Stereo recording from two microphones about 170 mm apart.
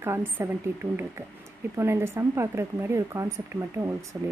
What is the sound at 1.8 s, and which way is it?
Speech, 15° right (ahead or behind).